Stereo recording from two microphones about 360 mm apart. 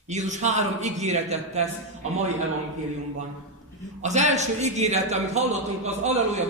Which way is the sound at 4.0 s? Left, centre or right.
Centre.